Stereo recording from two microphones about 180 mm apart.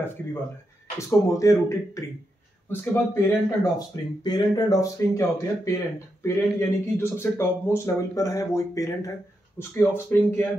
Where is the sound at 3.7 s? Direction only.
20° left (ahead or behind).